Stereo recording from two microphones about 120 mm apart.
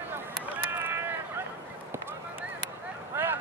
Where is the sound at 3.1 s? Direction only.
15° right (ahead or behind).